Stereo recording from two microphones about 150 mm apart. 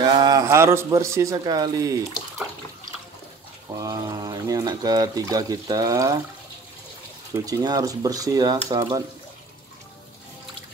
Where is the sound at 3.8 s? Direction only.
25° right (ahead or behind).